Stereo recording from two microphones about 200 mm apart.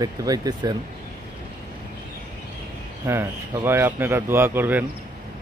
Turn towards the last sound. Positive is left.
turn(degrees=-10)  # may be behind; listen again after turning